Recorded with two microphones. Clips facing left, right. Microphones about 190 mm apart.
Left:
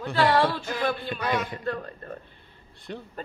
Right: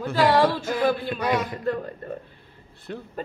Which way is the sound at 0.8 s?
5° right (ahead or behind).